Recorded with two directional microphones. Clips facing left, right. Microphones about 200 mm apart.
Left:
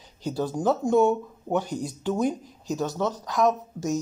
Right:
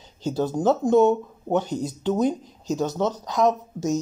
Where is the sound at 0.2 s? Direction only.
25° right (ahead or behind).